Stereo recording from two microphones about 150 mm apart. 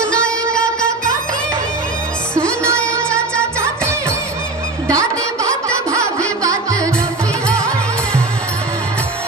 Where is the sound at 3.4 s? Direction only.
20° right (ahead or behind).